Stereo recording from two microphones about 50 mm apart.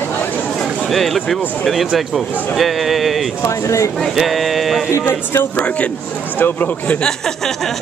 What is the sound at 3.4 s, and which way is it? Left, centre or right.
Speech, left.